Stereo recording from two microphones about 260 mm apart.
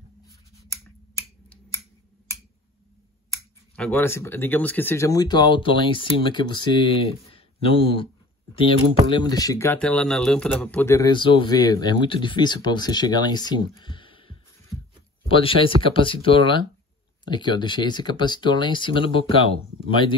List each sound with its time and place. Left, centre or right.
3.7 s speech: centre
9.1 s speech: centre